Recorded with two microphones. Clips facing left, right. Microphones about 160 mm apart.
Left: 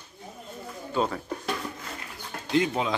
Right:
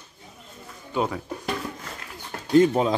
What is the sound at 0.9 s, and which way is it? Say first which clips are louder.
Music: right 1 dB; 10° right (ahead or behind).